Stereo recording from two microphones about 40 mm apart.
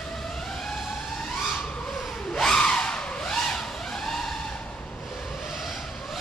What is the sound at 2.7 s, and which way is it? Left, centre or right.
Vehicle, left.